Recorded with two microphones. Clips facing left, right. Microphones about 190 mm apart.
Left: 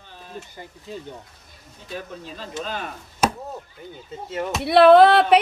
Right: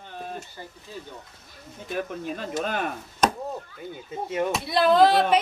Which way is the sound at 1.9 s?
55° right (ahead or behind).